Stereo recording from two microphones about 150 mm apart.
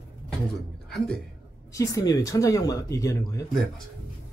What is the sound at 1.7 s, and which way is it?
Speech, 20° left (ahead or behind).